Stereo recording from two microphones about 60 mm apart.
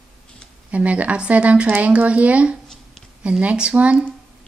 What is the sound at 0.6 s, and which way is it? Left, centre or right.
A woman's voice, right.